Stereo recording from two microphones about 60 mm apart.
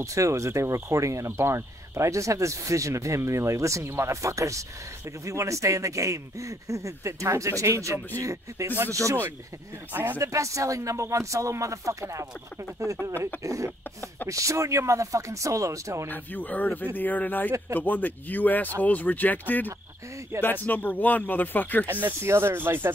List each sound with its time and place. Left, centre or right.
0.0 s speech: right
8.6 s speech: right
9.9 s speech: right
10.2 s speech: right
16.1 s speech: left
20.3 s speech: right
20.6 s speech: left
22.2 s speech: right